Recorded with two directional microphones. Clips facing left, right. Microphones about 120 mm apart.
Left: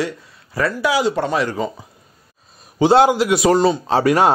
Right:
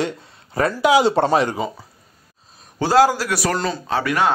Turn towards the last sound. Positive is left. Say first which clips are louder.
# left 5 dB
turn(degrees=35)  # may be behind; listen again after turning